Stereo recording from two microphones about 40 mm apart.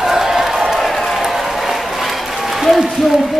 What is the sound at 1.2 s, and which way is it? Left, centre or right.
Applause, centre.